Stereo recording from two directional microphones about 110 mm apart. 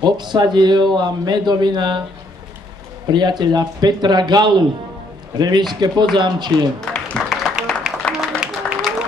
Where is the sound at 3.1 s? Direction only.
40° right (ahead or behind).